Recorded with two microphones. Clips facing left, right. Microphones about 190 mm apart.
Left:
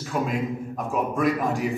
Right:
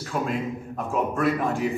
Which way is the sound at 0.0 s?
Centre (ahead or behind).